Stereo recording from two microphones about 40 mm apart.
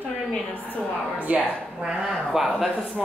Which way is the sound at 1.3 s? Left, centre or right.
Right.